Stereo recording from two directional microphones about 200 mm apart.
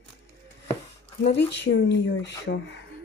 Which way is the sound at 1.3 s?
60° left (ahead or behind).